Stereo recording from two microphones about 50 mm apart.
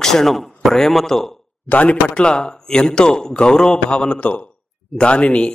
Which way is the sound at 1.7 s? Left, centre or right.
Left.